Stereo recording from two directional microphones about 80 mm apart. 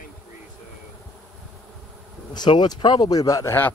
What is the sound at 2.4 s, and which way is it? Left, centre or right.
Speech, left.